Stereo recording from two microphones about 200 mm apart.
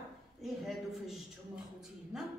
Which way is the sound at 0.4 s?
Centre (ahead or behind).